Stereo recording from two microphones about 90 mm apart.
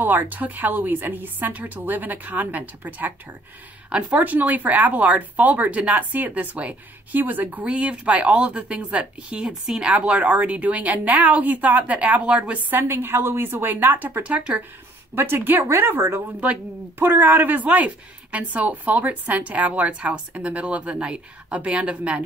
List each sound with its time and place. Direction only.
0.0 s a woman's voice: 20° right (ahead or behind)
15.1 s a woman's voice: 25° right (ahead or behind)